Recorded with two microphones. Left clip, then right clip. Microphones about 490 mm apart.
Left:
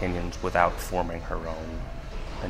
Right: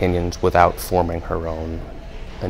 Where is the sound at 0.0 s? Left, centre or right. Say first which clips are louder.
Right 11 dB; right.